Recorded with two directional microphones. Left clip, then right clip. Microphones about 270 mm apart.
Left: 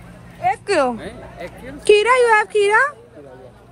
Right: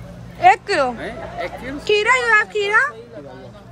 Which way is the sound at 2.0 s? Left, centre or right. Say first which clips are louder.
Right 1 dB; centre.